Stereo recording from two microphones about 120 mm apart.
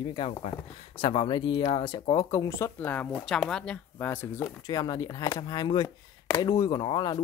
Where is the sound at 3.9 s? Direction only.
20° left (ahead or behind).